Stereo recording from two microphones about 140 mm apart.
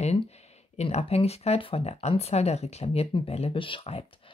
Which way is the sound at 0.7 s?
45° left (ahead or behind).